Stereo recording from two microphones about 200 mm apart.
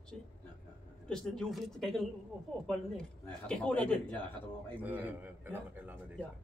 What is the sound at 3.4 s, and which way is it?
Speech, 5° left (ahead or behind).